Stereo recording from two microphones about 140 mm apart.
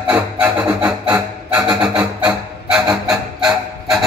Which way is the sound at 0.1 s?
5° right (ahead or behind).